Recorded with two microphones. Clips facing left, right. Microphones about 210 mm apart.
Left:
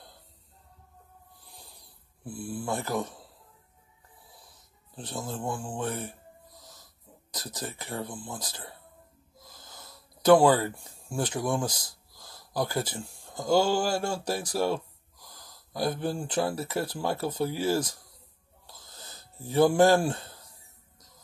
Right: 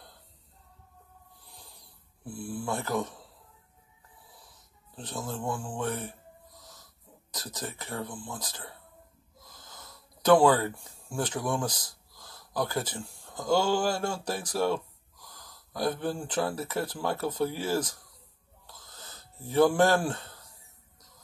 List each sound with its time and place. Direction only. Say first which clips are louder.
2.3 s speech: left 1 dB; 10° left (ahead or behind)
5.1 s speech: even; 20° left (ahead or behind)
7.3 s speech: left 1 dB; 10° left (ahead or behind)
9.5 s a sound: even; 10° left (ahead or behind)
10.4 s speech: left 1 dB; 10° left (ahead or behind)
18.7 s a sound: even; 10° left (ahead or behind)